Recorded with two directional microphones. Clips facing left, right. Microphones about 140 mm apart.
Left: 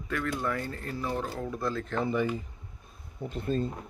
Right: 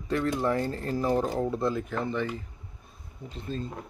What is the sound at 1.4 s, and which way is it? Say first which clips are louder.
Speech: right 5 dB; 25° right (ahead or behind).